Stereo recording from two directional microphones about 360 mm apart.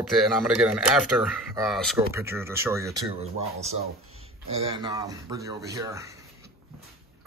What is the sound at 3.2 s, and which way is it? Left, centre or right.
Speech, centre.